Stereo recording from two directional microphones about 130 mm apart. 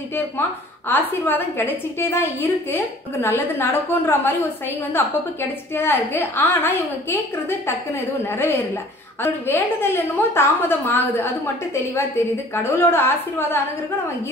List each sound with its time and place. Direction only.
0.8 s a woman's voice: 15° left (ahead or behind)
5.8 s a woman's voice: 15° left (ahead or behind)
12.6 s a woman's voice: 15° left (ahead or behind)